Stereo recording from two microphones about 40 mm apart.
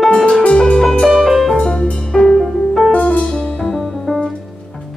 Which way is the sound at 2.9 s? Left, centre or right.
Left.